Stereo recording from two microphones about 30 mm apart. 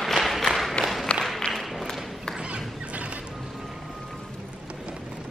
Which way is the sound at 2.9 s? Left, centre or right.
Right.